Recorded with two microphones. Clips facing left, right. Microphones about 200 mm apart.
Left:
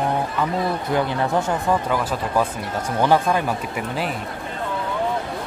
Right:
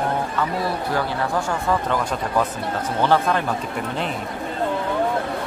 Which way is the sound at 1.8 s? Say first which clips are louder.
Even; 10° left (ahead or behind).